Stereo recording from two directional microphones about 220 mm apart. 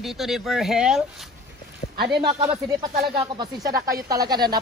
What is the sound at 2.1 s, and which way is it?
A man's voice, 20° right (ahead or behind).